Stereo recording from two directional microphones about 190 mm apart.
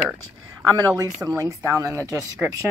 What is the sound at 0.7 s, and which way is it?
Speech, 20° right (ahead or behind).